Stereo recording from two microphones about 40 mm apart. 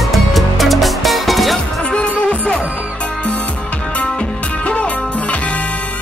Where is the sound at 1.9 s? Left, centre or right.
Left.